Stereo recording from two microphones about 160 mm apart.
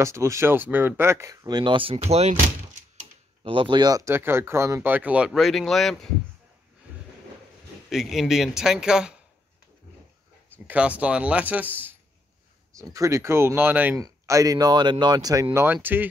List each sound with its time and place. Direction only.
0.0 s speech: 20° right (ahead or behind); by 2.3 s 40° right (ahead or behind)
3.4 s speech: 30° right (ahead or behind); by 5.9 s centre (ahead or behind)
6.9 s a sound: 10° right (ahead or behind)
7.9 s a man's voice: centre (ahead or behind)
10.5 s speech: 10° right (ahead or behind)
15.5 s speech: 10° right (ahead or behind)